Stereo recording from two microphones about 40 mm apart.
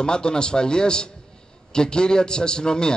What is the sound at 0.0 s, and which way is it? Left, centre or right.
A man's voice, left.